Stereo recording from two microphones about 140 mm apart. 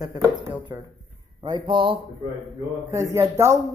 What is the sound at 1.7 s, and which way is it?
Speech, 35° right (ahead or behind).